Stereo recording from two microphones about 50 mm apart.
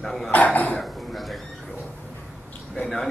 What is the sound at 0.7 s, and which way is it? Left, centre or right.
Cough, centre.